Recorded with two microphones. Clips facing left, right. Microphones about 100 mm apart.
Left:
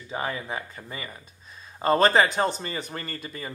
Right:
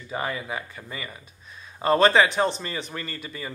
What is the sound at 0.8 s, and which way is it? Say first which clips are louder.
Speech: right 1 dB; 30° left (ahead or behind).